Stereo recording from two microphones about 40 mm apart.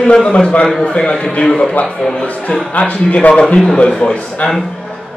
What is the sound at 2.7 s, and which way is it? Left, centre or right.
Speech, left.